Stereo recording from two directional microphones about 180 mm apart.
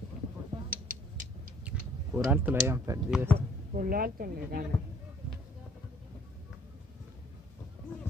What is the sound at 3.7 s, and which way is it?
Speech, 50° right (ahead or behind).